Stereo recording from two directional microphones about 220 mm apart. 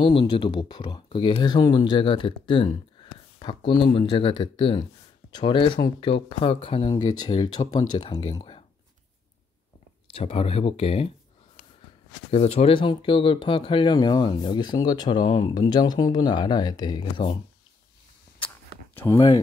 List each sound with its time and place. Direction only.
0.0 s speech: 25° left (ahead or behind)
10.1 s speech: 25° left (ahead or behind)
12.3 s speech: 30° left (ahead or behind)
18.9 s speech: 15° left (ahead or behind)